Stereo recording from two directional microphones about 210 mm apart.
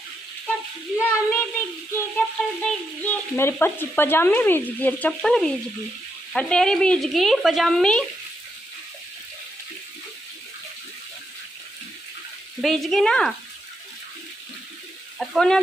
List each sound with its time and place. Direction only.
0.9 s speech: 10° left (ahead or behind)
12.5 s speech: centre (ahead or behind)
15.1 s speech: centre (ahead or behind)